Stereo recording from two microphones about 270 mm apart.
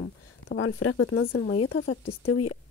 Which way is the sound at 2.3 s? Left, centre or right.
Left.